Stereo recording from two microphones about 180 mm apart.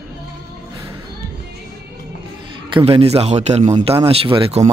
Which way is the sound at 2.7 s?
30° right (ahead or behind).